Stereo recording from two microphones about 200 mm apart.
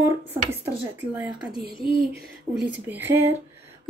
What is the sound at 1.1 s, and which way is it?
Speech, 10° right (ahead or behind).